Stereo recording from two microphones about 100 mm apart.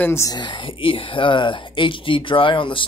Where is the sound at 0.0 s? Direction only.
25° left (ahead or behind).